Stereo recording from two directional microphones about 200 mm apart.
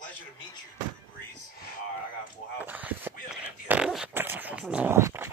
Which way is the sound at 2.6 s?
10° right (ahead or behind).